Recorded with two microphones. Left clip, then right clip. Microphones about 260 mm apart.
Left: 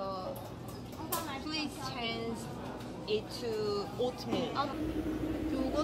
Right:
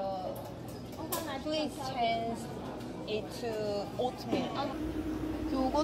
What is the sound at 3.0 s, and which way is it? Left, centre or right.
Speech, left.